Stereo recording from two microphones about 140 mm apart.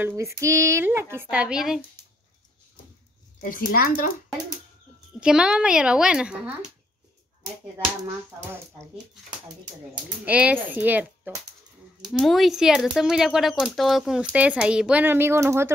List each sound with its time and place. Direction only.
0.1 s speech: 20° right (ahead or behind); by 1.8 s 5° right (ahead or behind)
3.4 s speech: 85° left
5.2 s speech: 5° right (ahead or behind)
8.4 s speech: 20° right (ahead or behind)
10.2 s speech: 10° right (ahead or behind)
12.1 s speech: centre (ahead or behind); by 15.7 s 20° right (ahead or behind)